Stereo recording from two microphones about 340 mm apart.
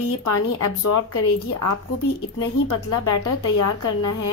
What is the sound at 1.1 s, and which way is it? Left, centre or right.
A woman's voice, left.